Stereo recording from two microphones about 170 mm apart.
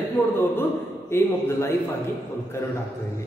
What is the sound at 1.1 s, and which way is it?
Speech, 15° left (ahead or behind).